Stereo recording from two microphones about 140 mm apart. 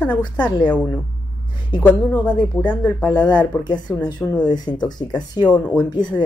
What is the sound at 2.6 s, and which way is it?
Speech, 10° left (ahead or behind).